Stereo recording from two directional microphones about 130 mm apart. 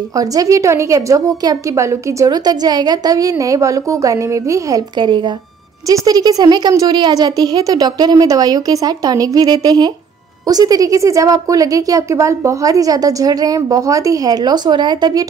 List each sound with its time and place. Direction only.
0.1 s a woman's voice: 25° right (ahead or behind)